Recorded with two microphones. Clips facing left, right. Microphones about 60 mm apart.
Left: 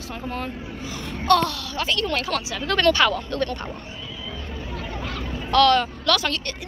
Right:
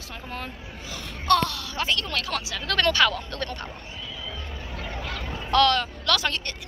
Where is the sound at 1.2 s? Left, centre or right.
Centre.